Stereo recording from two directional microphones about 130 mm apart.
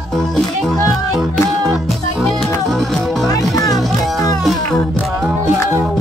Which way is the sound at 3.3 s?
30° left (ahead or behind).